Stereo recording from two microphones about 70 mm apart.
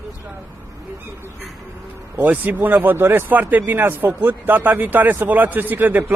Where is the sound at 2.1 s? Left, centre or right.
Right.